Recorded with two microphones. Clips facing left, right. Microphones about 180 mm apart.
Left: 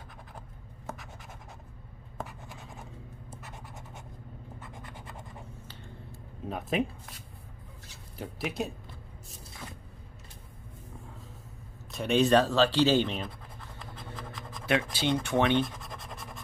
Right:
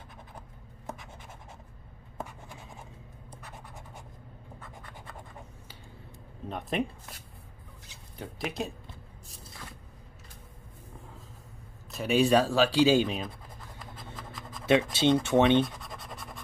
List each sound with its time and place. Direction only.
3.3 s scratch: centre (ahead or behind)
6.7 s speech: centre (ahead or behind)
8.2 s speech: 5° left (ahead or behind)
11.9 s speech: 5° right (ahead or behind)
14.7 s speech: 25° right (ahead or behind)
15.6 s scratch: centre (ahead or behind)